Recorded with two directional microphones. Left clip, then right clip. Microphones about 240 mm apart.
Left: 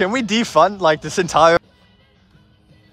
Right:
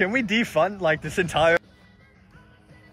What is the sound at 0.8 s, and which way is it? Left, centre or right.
Speech, left.